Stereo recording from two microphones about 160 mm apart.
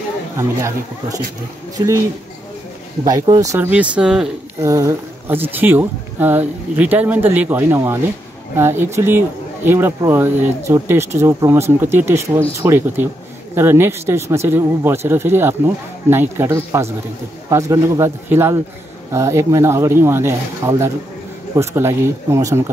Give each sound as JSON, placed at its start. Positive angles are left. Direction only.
{"t": 0.4, "sound": "a man's voice", "side_deg": -20}
{"t": 3.1, "sound": "speech", "side_deg": -20}
{"t": 4.6, "sound": "a man's voice", "side_deg": -20}